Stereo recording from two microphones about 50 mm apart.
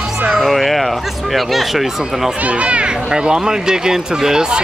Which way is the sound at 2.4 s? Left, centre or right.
Right.